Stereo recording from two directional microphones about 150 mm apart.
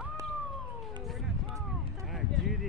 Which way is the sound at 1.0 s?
Centre (ahead or behind).